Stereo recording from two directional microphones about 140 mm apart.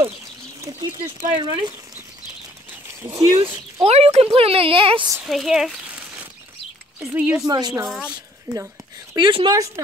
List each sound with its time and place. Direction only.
0.6 s speech: 25° right (ahead or behind)
1.3 s speech: 35° right (ahead or behind)
3.0 s speech: 20° right (ahead or behind)
3.8 s a woman's voice: 50° right (ahead or behind)
5.2 s a woman's voice: centre (ahead or behind)
7.4 s speech: 30° right (ahead or behind)
9.1 s speech: 35° right (ahead or behind)